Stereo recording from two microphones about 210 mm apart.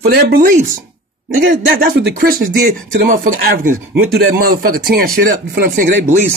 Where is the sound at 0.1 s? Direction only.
45° right (ahead or behind).